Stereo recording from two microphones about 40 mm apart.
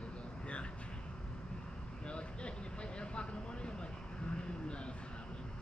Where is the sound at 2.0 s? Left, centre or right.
Left.